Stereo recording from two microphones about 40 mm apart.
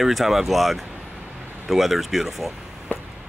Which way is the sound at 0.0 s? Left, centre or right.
Centre.